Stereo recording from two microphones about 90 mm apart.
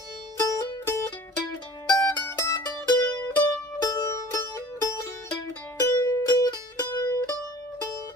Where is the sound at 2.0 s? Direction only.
30° left (ahead or behind).